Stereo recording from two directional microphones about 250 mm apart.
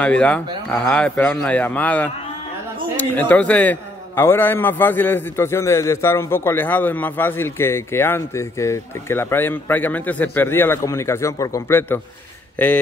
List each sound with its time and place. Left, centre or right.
0.0 s a man's voice: centre